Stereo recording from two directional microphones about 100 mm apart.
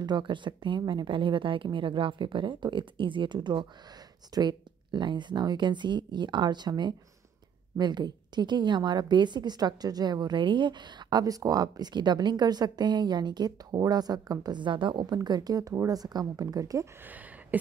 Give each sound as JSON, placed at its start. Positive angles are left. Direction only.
{"t": 0.0, "sound": "a woman's voice", "side_deg": -50}
{"t": 15.1, "sound": "a woman's voice", "side_deg": -40}
{"t": 17.0, "sound": "a sound", "side_deg": -15}